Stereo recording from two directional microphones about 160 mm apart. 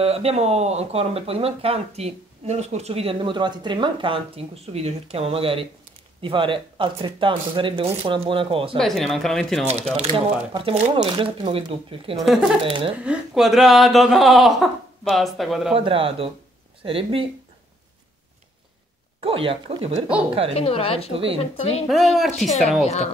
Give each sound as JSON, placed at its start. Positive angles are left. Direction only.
{"t": 0.0, "sound": "speech", "side_deg": -40}
{"t": 8.7, "sound": "speech", "side_deg": 0}
{"t": 9.9, "sound": "speech", "side_deg": -35}
{"t": 12.2, "sound": "speech", "side_deg": 0}
{"t": 12.6, "sound": "speech", "side_deg": -35}
{"t": 13.0, "sound": "speech", "side_deg": -5}
{"t": 15.7, "sound": "speech", "side_deg": -35}
{"t": 19.2, "sound": "speech", "side_deg": -35}
{"t": 20.5, "sound": "a woman's voice", "side_deg": 35}
{"t": 21.1, "sound": "speech", "side_deg": -35}
{"t": 21.4, "sound": "a woman's voice", "side_deg": 40}
{"t": 21.8, "sound": "speech", "side_deg": 0}